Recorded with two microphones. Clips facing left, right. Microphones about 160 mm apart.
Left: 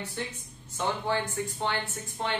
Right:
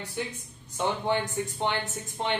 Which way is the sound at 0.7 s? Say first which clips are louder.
Right 2 dB; 15° right (ahead or behind).